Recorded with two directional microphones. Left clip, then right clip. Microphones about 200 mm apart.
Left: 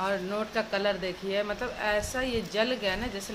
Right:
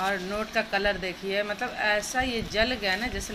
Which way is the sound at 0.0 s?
10° left (ahead or behind).